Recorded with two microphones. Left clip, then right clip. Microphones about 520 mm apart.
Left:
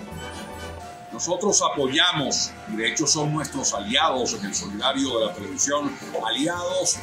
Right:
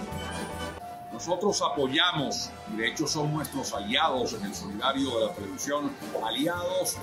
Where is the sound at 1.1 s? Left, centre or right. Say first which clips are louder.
Left 5 dB; right.